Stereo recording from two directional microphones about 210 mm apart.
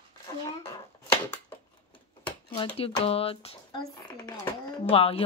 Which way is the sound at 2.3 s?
25° left (ahead or behind).